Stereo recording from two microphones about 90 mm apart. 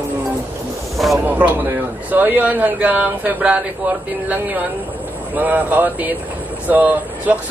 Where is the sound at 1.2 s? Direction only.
20° right (ahead or behind).